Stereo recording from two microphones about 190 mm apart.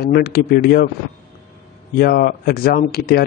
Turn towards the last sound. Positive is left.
turn(degrees=55)  # may be behind; listen again after turning